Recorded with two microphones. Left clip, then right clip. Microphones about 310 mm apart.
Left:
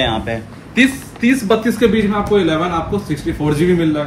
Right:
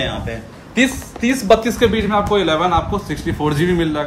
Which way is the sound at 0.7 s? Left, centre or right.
Right.